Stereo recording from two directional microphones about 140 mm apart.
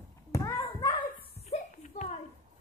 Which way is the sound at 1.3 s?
50° left (ahead or behind).